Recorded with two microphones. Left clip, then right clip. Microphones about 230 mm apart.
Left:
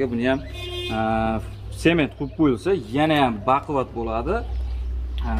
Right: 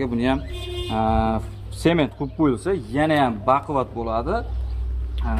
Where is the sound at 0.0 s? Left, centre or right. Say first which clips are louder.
Left 1 dB; right.